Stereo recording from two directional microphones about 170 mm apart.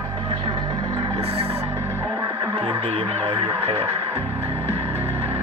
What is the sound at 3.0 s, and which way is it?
Radio, 40° right (ahead or behind).